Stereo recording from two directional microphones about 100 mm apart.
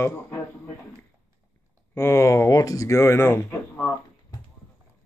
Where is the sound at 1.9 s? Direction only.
25° left (ahead or behind).